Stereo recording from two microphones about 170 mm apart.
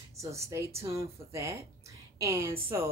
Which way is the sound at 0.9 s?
15° right (ahead or behind).